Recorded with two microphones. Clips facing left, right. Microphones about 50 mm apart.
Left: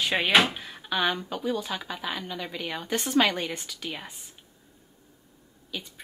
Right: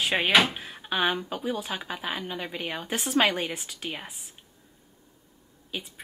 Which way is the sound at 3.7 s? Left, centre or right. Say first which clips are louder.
Even; right.